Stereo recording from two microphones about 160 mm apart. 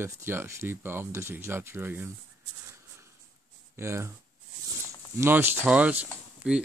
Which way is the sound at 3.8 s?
15° right (ahead or behind).